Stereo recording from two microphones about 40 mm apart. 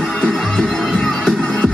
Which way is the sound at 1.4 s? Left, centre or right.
Left.